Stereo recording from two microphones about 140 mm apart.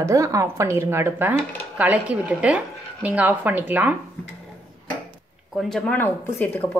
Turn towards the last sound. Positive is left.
turn(degrees=15)  # may be behind; listen again after turning